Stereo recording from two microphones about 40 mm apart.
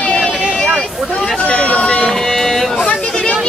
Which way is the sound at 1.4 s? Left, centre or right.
Left.